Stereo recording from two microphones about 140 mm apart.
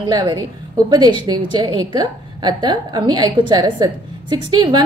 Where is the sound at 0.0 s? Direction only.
35° right (ahead or behind).